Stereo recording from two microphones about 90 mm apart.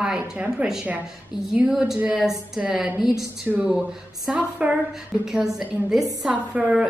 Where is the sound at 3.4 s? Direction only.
15° right (ahead or behind).